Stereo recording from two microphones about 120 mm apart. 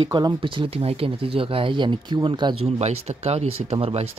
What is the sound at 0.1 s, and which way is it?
Speech, 40° right (ahead or behind).